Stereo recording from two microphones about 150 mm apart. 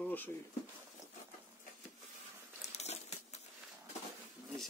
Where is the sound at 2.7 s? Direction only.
45° left (ahead or behind).